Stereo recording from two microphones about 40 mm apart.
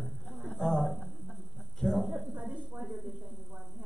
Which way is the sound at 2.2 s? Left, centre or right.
Right.